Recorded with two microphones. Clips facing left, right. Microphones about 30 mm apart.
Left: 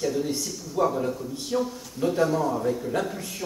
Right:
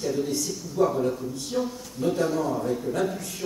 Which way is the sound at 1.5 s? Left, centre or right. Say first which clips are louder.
Left 2 dB; centre.